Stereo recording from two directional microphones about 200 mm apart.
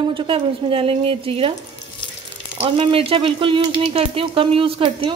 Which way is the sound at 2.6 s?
25° right (ahead or behind).